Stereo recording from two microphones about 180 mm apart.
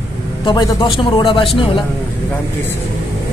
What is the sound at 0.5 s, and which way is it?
A man's voice, 25° left (ahead or behind).